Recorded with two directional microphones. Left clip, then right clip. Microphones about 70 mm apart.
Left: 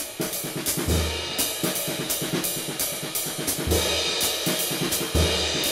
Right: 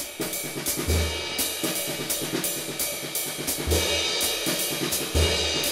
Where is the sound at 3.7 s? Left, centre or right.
Centre.